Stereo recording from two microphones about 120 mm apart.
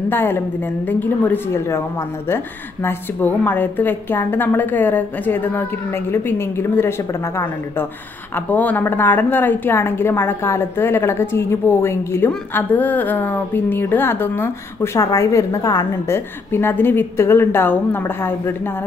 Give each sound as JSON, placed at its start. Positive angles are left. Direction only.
{"t": 0.1, "sound": "a woman's voice", "side_deg": 20}
{"t": 8.5, "sound": "a woman's voice", "side_deg": 15}
{"t": 15.0, "sound": "a woman's voice", "side_deg": 30}
{"t": 15.9, "sound": "a woman's voice", "side_deg": 20}